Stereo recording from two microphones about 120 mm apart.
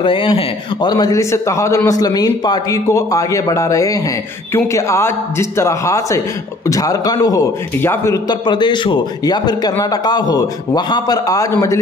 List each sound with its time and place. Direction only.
0.0 s a man's voice: 45° left (ahead or behind); by 8.2 s 20° left (ahead or behind)
8.3 s a man's voice: 40° left (ahead or behind)